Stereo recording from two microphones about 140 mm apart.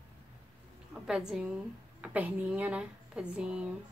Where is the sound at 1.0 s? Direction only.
5° right (ahead or behind).